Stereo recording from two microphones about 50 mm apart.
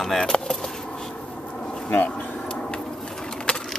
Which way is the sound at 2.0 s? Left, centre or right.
Left.